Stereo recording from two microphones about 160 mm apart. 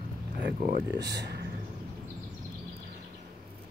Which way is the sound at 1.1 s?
90° right.